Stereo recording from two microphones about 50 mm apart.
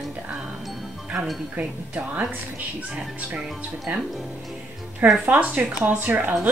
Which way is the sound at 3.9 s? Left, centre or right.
Right.